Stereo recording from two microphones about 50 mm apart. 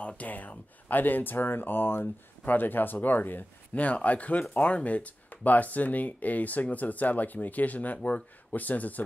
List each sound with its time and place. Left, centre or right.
0.2 s speech: left